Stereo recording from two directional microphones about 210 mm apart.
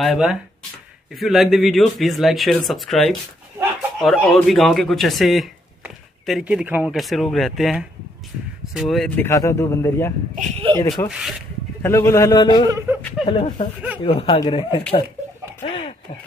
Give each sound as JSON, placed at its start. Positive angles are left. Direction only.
{"t": 0.0, "sound": "speech", "side_deg": 0}
{"t": 11.1, "sound": "speech", "side_deg": -5}
{"t": 11.8, "sound": "speech", "side_deg": 15}
{"t": 12.6, "sound": "speech", "side_deg": -15}
{"t": 13.2, "sound": "speech", "side_deg": 25}
{"t": 15.6, "sound": "a sound", "side_deg": 30}